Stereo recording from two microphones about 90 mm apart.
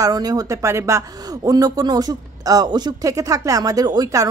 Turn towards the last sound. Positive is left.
turn(degrees=-45)  # may be behind; listen again after turning